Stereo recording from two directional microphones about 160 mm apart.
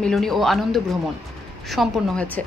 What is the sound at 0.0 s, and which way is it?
A woman's voice, centre (ahead or behind).